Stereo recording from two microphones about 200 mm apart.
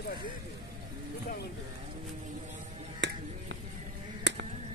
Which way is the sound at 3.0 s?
60° right (ahead or behind).